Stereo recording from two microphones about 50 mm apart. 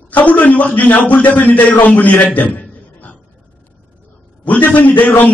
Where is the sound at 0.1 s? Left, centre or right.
Left.